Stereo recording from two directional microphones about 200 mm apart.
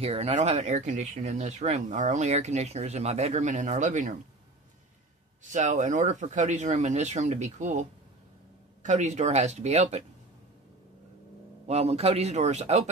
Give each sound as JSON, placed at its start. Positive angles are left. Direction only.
{"t": 0.0, "sound": "speech", "side_deg": -30}
{"t": 5.4, "sound": "speech", "side_deg": -40}
{"t": 8.8, "sound": "speech", "side_deg": -35}
{"t": 11.6, "sound": "speech", "side_deg": -30}